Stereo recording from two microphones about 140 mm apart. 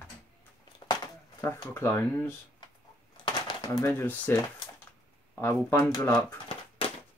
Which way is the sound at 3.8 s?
15° left (ahead or behind).